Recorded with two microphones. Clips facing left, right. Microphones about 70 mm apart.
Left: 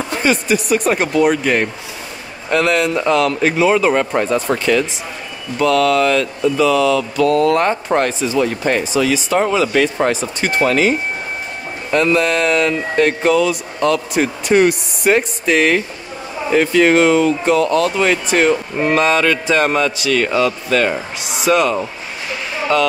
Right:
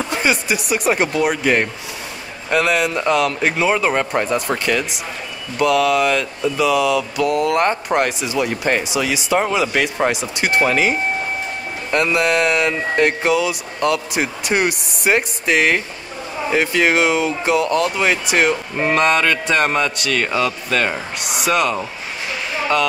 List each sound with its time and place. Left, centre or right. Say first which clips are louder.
0.2 s a man's voice: left 6 dB; centre
7.3 s a man's voice: left 1 dB; centre